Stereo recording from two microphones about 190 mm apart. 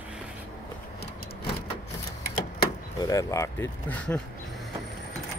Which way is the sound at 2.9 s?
20° left (ahead or behind).